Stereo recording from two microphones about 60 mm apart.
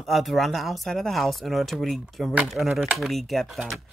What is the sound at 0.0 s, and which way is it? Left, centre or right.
Speech, centre.